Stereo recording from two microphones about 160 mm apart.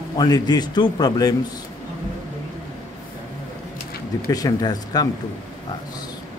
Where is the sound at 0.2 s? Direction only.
25° left (ahead or behind).